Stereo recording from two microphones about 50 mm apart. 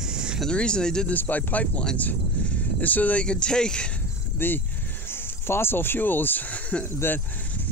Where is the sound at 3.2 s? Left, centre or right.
Left.